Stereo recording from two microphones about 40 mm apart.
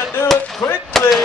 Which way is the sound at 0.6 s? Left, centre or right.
Left.